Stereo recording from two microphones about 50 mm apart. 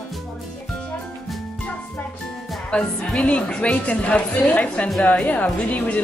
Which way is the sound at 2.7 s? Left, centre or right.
Left.